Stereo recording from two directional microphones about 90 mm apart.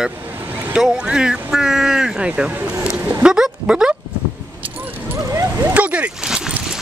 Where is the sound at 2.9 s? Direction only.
20° right (ahead or behind).